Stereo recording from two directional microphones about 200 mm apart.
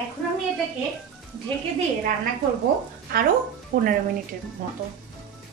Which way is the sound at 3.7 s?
35° right (ahead or behind).